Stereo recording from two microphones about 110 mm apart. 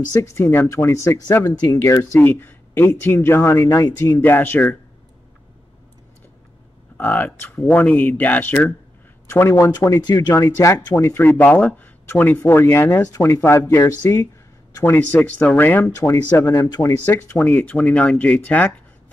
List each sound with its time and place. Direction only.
0.1 s speech: 25° left (ahead or behind)
4.2 s speech: 20° left (ahead or behind)
7.0 s speech: 15° left (ahead or behind)
14.9 s speech: 15° left (ahead or behind)
16.6 s speech: 35° left (ahead or behind)
17.0 s speech: 20° left (ahead or behind)